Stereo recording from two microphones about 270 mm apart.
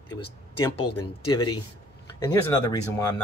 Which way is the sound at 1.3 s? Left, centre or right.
Centre.